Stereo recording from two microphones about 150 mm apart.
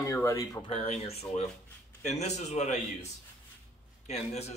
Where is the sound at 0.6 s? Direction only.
40° left (ahead or behind).